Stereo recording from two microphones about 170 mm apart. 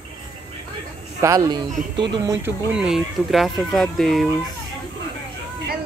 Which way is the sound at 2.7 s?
5° right (ahead or behind).